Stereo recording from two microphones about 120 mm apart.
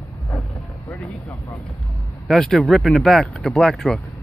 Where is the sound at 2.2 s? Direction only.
Centre (ahead or behind).